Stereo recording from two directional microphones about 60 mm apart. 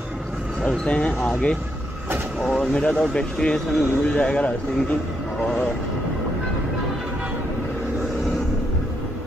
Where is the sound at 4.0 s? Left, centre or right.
Left.